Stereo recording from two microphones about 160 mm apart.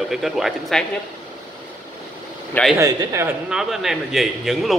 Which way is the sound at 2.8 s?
20° right (ahead or behind).